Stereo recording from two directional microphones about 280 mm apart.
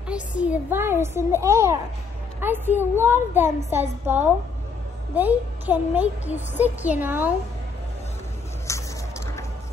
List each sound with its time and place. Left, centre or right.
0.4 s a woman's voice: centre
8.7 s music: centre